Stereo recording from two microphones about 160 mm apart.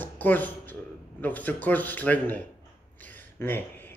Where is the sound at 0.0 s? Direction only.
10° left (ahead or behind).